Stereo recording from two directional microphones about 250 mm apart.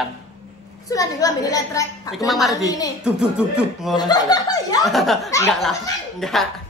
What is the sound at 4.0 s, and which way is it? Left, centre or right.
Speech, centre.